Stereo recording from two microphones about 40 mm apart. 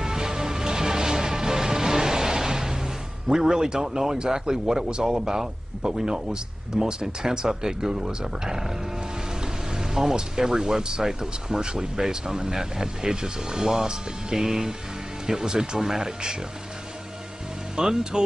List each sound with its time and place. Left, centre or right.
0.0 s music: centre
9.4 s speech: centre
17.7 s speech: centre